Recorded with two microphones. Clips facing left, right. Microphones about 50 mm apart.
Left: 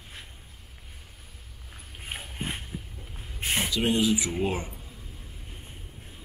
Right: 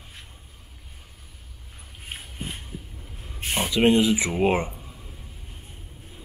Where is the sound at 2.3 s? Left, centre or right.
Left.